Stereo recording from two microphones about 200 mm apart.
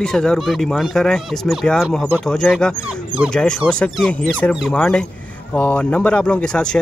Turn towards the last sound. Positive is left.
turn(degrees=5)  # may be behind; listen again after turning